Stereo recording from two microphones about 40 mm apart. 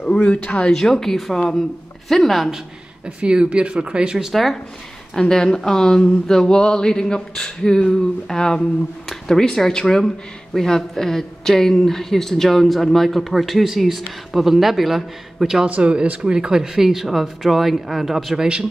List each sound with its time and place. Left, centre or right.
0.0 s speech: left
0.7 s speech: centre
3.2 s speech: right
4.3 s a man's voice: centre
5.1 s a man's voice: centre
15.8 s speech: right; by 18.4 s centre
18.4 s speech: centre